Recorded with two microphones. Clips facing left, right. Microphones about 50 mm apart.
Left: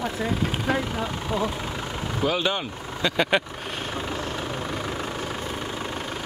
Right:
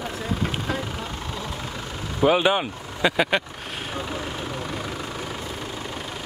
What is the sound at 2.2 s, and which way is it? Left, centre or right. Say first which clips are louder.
Speech: right 6 dB; right.